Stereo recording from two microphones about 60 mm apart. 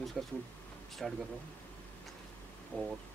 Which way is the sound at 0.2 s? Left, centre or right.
Centre.